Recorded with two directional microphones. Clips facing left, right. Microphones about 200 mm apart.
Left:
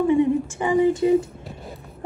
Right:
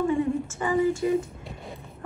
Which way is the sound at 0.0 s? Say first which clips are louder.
Left 6 dB; 15° left (ahead or behind).